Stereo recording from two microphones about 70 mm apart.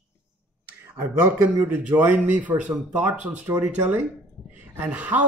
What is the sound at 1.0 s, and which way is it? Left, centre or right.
A man's voice, right.